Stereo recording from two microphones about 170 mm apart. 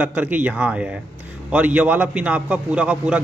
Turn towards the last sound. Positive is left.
turn(degrees=-5)  # may be behind; listen again after turning